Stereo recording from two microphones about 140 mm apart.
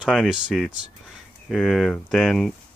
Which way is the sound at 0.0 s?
5° right (ahead or behind).